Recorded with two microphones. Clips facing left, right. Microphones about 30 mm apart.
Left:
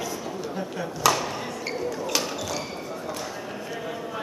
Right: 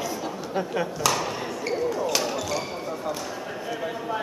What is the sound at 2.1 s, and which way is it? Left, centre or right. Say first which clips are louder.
Basketball bounce: right 2 dB; centre.